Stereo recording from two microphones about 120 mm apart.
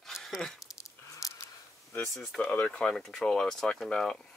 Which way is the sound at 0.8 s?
25° left (ahead or behind).